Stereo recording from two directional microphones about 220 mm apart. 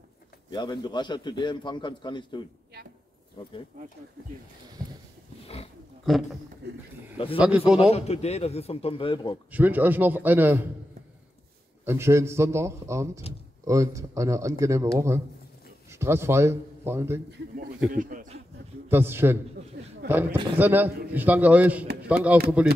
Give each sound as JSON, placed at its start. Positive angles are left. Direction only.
{"t": 0.5, "sound": "a man's voice", "side_deg": 20}
{"t": 4.8, "sound": "a sound", "side_deg": -15}
{"t": 6.1, "sound": "a man's voice", "side_deg": 0}
{"t": 7.3, "sound": "a man's voice", "side_deg": -5}
{"t": 7.8, "sound": "a man's voice", "side_deg": 30}
{"t": 9.5, "sound": "a man's voice", "side_deg": -5}
{"t": 11.8, "sound": "a man's voice", "side_deg": -10}
{"t": 17.9, "sound": "a sound", "side_deg": -35}
{"t": 18.9, "sound": "a man's voice", "side_deg": -10}
{"t": 19.7, "sound": "a sound", "side_deg": -50}
{"t": 20.1, "sound": "a man's voice", "side_deg": -10}